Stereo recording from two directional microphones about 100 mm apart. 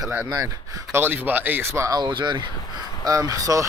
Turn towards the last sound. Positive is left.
turn(degrees=-35)  # may be behind; listen again after turning